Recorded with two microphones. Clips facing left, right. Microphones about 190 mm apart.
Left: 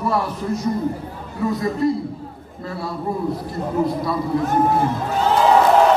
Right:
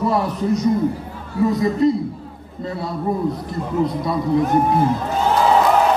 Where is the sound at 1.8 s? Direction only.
20° right (ahead or behind).